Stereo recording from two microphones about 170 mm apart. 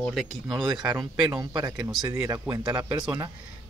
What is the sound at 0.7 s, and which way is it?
Speech, 20° right (ahead or behind).